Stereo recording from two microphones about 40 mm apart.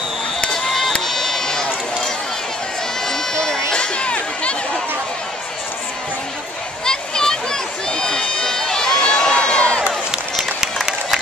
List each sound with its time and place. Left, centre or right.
0.5 s run: centre
3.3 s run: centre
6.8 s a sound: centre
7.9 s run: centre